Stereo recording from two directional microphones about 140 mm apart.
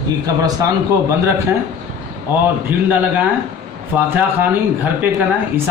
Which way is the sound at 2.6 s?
15° right (ahead or behind).